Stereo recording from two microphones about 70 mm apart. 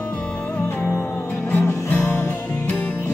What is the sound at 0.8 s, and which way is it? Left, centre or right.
Music, left.